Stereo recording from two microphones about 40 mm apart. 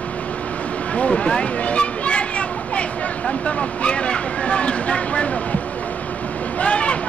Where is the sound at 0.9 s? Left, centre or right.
Left.